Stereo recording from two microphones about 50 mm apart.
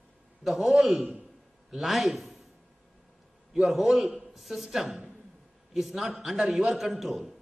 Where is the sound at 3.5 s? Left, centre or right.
Centre.